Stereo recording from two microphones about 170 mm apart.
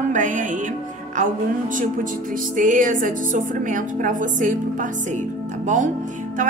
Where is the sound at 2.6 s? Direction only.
50° right (ahead or behind).